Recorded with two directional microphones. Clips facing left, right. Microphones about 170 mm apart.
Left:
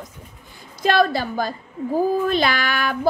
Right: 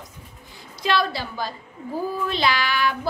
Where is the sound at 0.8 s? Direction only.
50° left (ahead or behind).